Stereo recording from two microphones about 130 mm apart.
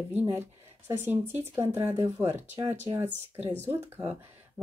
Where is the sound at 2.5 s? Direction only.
50° right (ahead or behind).